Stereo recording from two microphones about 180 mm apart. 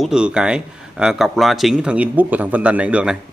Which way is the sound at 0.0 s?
5° right (ahead or behind).